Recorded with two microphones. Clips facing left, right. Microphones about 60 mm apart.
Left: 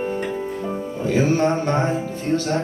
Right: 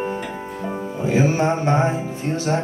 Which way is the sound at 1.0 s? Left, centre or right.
Centre.